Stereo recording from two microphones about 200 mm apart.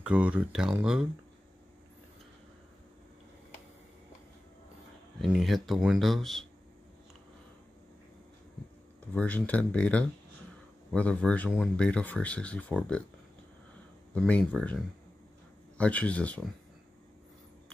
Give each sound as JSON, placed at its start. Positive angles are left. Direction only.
{"t": 0.0, "sound": "speech", "side_deg": -5}
{"t": 5.2, "sound": "speech", "side_deg": 0}
{"t": 9.1, "sound": "speech", "side_deg": 5}
{"t": 14.1, "sound": "speech", "side_deg": 5}
{"t": 15.8, "sound": "speech", "side_deg": 5}